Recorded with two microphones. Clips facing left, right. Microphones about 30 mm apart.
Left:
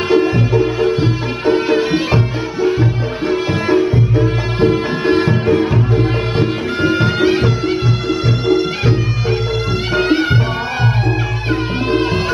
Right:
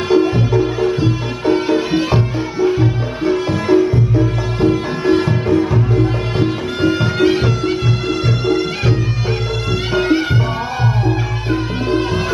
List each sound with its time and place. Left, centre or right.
0.1 s music: left